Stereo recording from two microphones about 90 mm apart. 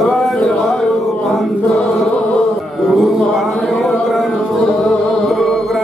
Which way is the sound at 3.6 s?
Centre (ahead or behind).